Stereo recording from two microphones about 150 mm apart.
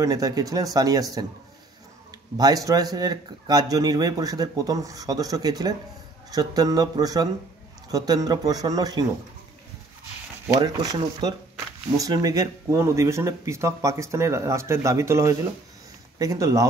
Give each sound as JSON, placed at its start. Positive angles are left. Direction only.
{"t": 0.0, "sound": "a man's voice", "side_deg": -25}
{"t": 2.3, "sound": "a man's voice", "side_deg": -25}
{"t": 10.6, "sound": "a man's voice", "side_deg": -30}